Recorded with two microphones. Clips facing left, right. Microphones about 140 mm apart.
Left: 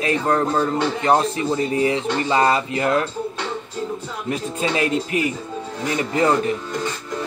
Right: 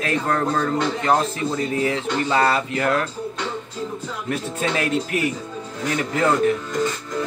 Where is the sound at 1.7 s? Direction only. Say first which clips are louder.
Left 2 dB; 5° left (ahead or behind).